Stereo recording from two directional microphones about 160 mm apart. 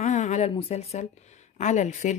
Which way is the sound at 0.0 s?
45° left (ahead or behind).